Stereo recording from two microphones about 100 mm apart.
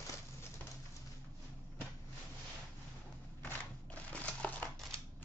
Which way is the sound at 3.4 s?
15° left (ahead or behind).